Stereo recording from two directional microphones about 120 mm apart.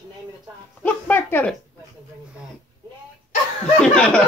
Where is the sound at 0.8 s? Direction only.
15° left (ahead or behind).